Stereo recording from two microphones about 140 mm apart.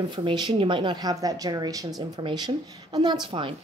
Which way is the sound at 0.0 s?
30° right (ahead or behind).